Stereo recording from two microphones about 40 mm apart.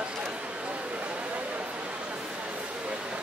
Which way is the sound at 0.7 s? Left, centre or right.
Right.